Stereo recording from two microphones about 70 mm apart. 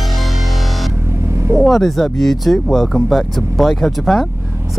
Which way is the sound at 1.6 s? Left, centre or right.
Centre.